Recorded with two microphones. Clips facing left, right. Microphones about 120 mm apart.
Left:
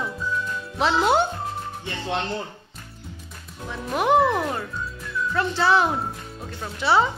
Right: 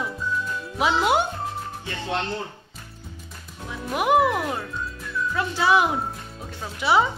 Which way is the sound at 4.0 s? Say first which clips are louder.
Left 1 dB; 10° right (ahead or behind).